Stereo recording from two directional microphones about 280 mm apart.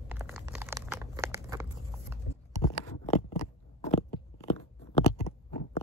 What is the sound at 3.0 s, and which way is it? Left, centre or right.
Crunch, left.